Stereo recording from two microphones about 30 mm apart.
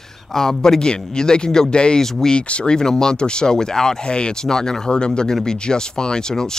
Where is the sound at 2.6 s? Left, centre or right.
Left.